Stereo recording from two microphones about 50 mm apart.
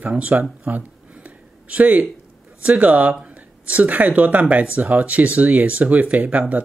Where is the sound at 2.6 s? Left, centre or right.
Right.